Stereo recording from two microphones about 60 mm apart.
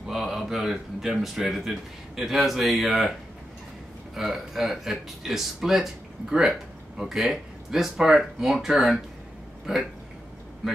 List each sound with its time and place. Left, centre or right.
0.0 s speech: centre